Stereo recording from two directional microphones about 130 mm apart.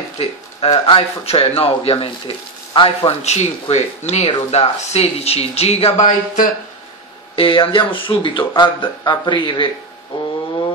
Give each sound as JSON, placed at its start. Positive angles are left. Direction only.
{"t": 0.2, "sound": "speech", "side_deg": 50}
{"t": 6.0, "sound": "speech", "side_deg": 90}
{"t": 7.3, "sound": "speech", "side_deg": 40}